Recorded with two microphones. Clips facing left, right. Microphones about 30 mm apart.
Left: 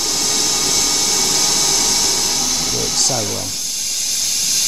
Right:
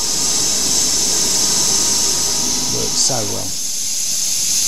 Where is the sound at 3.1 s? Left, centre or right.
Centre.